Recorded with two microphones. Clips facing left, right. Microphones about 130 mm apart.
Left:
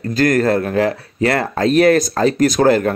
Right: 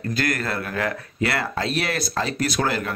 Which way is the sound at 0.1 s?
45° left (ahead or behind).